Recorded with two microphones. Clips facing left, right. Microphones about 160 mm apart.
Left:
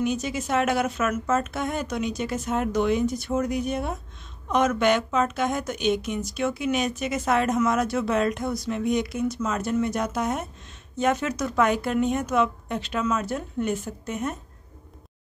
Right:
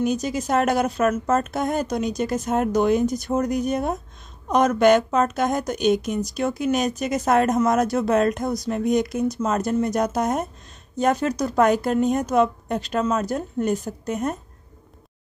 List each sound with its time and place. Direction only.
0.0 s speech: 40° right (ahead or behind)